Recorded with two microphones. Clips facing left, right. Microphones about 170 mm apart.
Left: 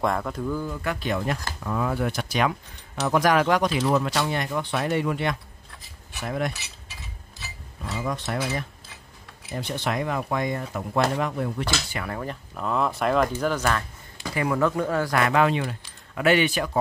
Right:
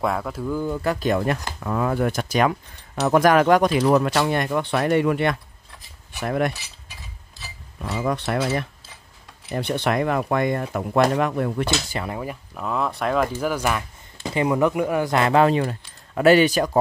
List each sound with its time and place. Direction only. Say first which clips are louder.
0.0 s speech: right 1 dB; 5° right (ahead or behind)
0.7 s speech: right 6 dB; 40° right (ahead or behind)
1.6 s speech: right 3 dB; 55° right (ahead or behind)
8.0 s speech: right 5 dB; 65° right (ahead or behind)
12.1 s speech: right 2 dB; 10° right (ahead or behind)
14.2 s speech: right 4 dB; 20° right (ahead or behind); by 16.7 s 40° right (ahead or behind)